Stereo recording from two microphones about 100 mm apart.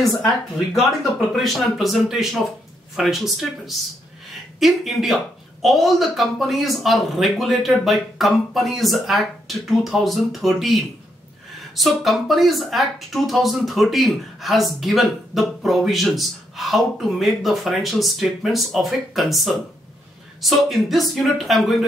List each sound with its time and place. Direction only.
1.3 s speech: centre (ahead or behind)